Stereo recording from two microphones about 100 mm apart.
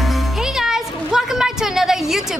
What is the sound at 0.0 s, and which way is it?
Speech, centre (ahead or behind).